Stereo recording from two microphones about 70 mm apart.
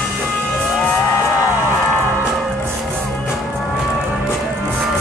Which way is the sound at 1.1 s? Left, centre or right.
Left.